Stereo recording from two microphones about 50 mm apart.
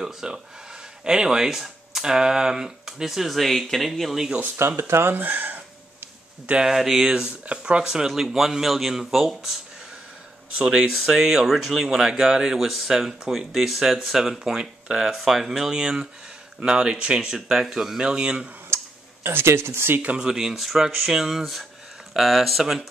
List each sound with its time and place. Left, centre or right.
0.0 s speech: centre
4.6 s speech: right
5.1 s speech: right
6.6 s speech: centre
10.6 s speech: centre
18.7 s a sound: right
19.2 s speech: right
20.2 s speech: centre